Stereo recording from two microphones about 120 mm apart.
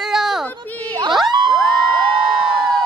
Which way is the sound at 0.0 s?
5° right (ahead or behind).